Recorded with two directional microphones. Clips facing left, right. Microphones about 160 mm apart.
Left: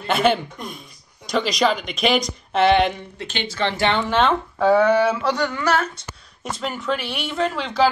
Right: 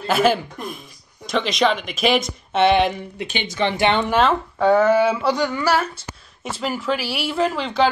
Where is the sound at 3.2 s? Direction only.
15° right (ahead or behind).